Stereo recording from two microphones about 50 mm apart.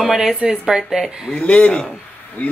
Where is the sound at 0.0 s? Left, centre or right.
Centre.